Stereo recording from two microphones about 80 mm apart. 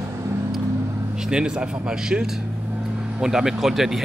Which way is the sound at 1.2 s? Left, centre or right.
Centre.